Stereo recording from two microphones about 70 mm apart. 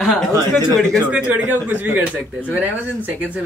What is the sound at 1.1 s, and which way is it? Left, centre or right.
Speech, centre.